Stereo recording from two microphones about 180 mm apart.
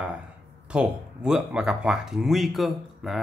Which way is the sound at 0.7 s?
5° right (ahead or behind).